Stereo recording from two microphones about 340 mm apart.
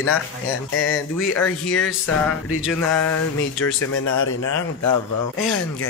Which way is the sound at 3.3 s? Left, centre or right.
Left.